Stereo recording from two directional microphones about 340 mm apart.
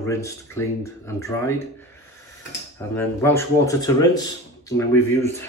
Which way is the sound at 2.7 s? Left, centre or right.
Centre.